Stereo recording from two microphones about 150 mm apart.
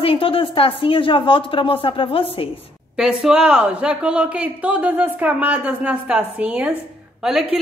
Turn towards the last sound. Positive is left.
turn(degrees=-5)  # may be behind; listen again after turning